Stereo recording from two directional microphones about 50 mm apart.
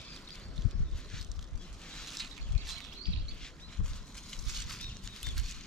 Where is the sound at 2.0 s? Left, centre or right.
Centre.